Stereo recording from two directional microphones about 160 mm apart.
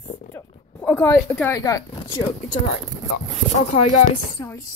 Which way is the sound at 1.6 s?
20° left (ahead or behind).